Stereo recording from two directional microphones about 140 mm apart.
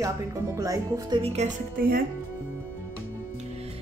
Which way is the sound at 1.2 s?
50° right (ahead or behind).